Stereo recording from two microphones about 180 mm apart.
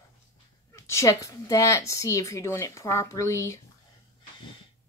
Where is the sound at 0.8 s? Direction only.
15° left (ahead or behind).